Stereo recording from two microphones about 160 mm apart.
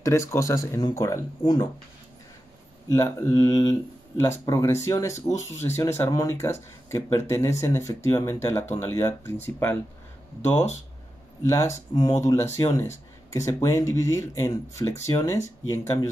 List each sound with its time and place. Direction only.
0.0 s speech: 15° left (ahead or behind)
2.9 s speech: 20° left (ahead or behind)
11.4 s speech: 20° left (ahead or behind)
12.7 s a sound: 20° left (ahead or behind)
13.5 s speech: 20° left (ahead or behind)